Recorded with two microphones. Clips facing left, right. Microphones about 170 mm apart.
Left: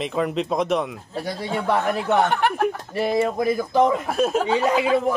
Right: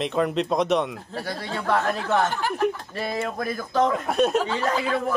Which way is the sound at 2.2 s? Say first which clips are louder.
Left 3 dB; 65° left (ahead or behind).